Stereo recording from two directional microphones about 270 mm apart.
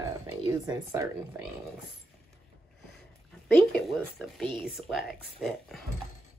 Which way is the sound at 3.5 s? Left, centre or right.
Centre.